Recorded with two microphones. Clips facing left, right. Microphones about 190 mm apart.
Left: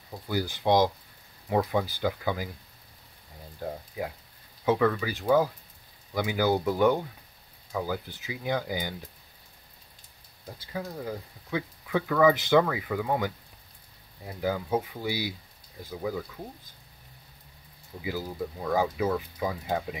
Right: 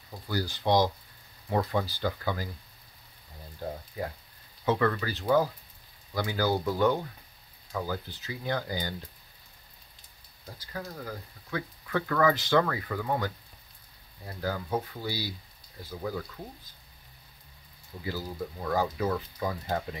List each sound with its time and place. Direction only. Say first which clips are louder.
0.1 s speech: left 2 dB; 15° left (ahead or behind)
3.6 s speech: left 1 dB; 5° left (ahead or behind)
10.4 s speech: left 3 dB; 10° left (ahead or behind)
18.0 s speech: left 2 dB; 10° left (ahead or behind)